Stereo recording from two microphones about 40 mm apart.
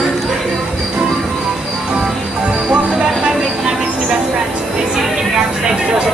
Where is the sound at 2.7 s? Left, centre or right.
Right.